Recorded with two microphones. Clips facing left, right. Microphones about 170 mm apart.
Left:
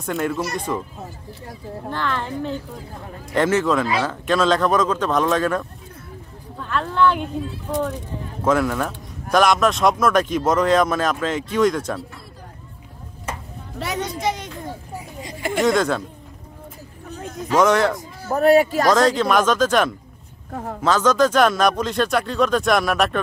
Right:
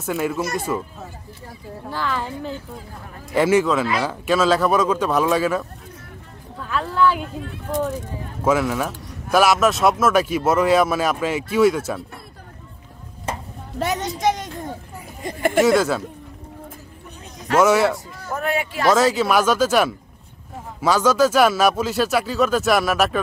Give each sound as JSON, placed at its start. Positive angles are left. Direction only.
{"t": 0.0, "sound": "a man's voice", "side_deg": -5}
{"t": 1.9, "sound": "a man's voice", "side_deg": -5}
{"t": 8.5, "sound": "a man's voice", "side_deg": -5}
{"t": 13.7, "sound": "a woman's voice", "side_deg": -45}
{"t": 15.6, "sound": "speech", "side_deg": -5}
{"t": 17.6, "sound": "a man's voice", "side_deg": -5}
{"t": 18.3, "sound": "a man's voice", "side_deg": 40}
{"t": 18.9, "sound": "a man's voice", "side_deg": -5}